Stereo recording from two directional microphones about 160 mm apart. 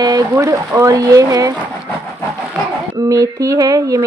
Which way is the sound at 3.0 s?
20° right (ahead or behind).